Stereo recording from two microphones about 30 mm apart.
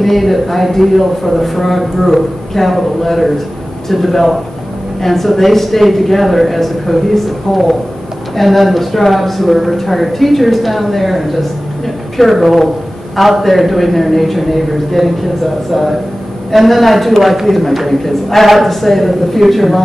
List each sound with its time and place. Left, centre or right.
0.0 s a man's voice: centre